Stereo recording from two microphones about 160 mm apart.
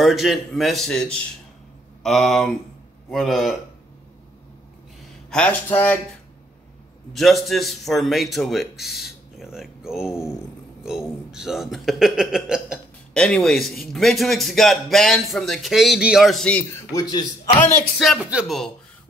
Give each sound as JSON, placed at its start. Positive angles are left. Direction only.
{"t": 0.0, "sound": "speech", "side_deg": 0}
{"t": 5.3, "sound": "speech", "side_deg": 10}
{"t": 7.2, "sound": "speech", "side_deg": 0}
{"t": 16.9, "sound": "a man's voice", "side_deg": 25}
{"t": 17.9, "sound": "speech", "side_deg": 0}